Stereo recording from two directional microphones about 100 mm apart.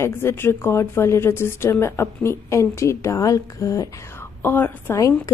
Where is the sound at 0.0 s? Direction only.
25° left (ahead or behind).